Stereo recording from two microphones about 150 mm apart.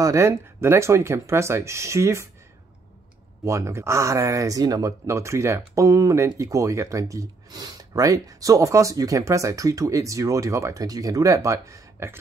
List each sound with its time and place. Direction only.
0.0 s speech: 20° right (ahead or behind)
3.4 s speech: 20° right (ahead or behind)